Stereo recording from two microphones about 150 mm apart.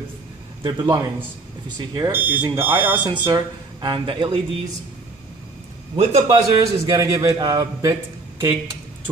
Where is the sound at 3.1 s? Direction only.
30° right (ahead or behind).